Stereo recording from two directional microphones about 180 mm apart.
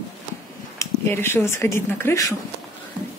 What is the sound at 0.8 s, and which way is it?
Speech, 15° left (ahead or behind).